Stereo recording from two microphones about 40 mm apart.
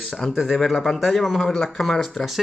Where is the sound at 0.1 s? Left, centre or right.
Centre.